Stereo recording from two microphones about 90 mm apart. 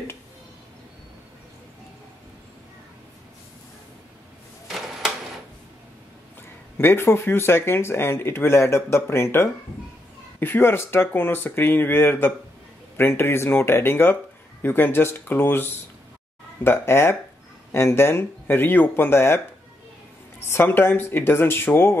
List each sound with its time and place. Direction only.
4.6 s a sound: centre (ahead or behind)
6.8 s speech: 25° left (ahead or behind)
20.4 s speech: 25° left (ahead or behind)